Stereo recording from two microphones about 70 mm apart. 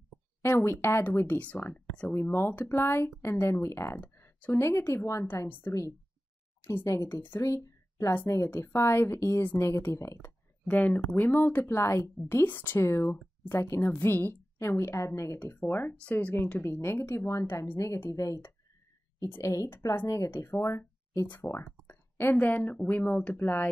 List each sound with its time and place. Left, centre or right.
0.4 s speech: left
6.6 s a woman's voice: left
10.7 s speech: left
12.4 s speech: left
15.2 s speech: left